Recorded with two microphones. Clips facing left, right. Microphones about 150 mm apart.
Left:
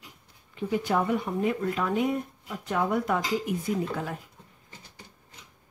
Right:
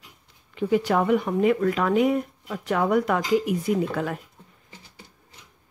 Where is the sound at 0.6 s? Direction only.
85° right.